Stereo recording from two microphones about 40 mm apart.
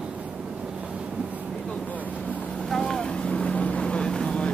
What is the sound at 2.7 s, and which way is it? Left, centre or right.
Boat, centre.